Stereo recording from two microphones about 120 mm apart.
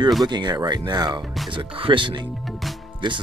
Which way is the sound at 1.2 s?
Centre (ahead or behind).